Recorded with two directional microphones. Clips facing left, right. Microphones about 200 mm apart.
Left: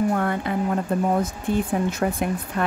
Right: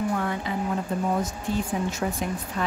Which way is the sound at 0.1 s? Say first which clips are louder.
Left 4 dB; 55° left (ahead or behind).